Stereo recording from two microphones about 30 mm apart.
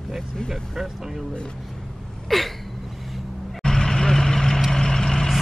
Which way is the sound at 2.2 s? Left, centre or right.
Centre.